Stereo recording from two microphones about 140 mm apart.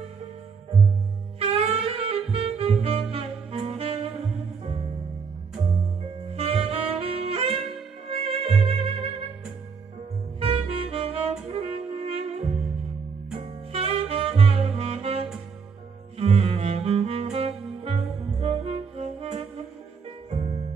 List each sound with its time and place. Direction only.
1.4 s saxophone: 45° right (ahead or behind)
6.3 s saxophone: 45° right (ahead or behind)
8.1 s music: 45° right (ahead or behind)
10.4 s saxophone: 45° right (ahead or behind)
11.4 s music: 45° right (ahead or behind)
13.4 s saxophone: 40° right (ahead or behind)
16.2 s music: 45° right (ahead or behind)